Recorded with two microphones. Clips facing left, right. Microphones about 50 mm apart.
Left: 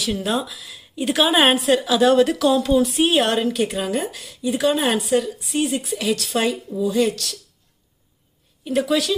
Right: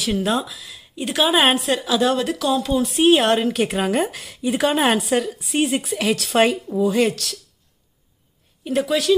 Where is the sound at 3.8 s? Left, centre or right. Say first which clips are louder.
Right 3 dB; right.